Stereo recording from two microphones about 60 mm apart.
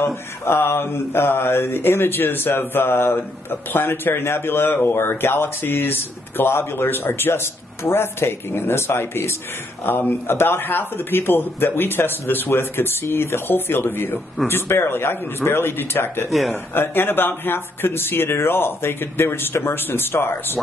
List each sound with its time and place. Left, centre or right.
0.0 s speech: left
16.3 s speech: centre
16.7 s speech: left